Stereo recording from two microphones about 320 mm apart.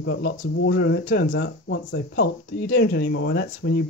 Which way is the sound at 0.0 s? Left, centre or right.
Left.